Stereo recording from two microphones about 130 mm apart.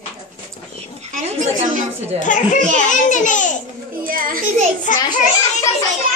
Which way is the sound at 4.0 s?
90° right.